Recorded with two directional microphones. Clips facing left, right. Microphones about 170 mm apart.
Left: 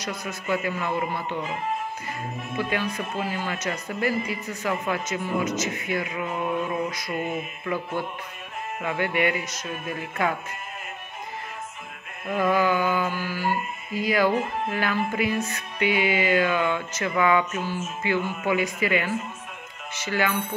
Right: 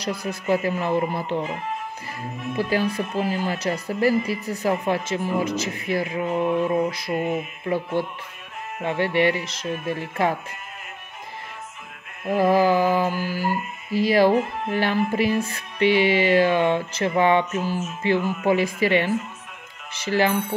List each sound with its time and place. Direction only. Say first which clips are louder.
0.0 s speech: right 5 dB; 35° right (ahead or behind)
12.3 s speech: right 4 dB; 35° right (ahead or behind)